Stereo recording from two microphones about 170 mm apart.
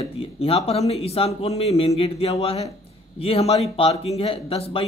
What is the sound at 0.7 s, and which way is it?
Speech, 35° left (ahead or behind).